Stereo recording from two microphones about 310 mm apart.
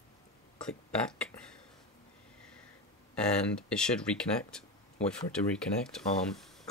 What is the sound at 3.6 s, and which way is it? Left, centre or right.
Speech, centre.